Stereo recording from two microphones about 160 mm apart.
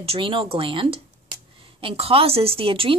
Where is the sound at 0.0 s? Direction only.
35° right (ahead or behind).